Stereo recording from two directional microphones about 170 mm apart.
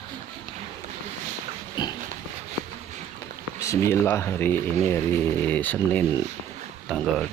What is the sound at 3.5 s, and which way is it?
Speech, 15° left (ahead or behind).